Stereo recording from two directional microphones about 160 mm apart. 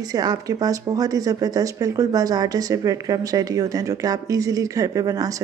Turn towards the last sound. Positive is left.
turn(degrees=-20)  # may be behind; listen again after turning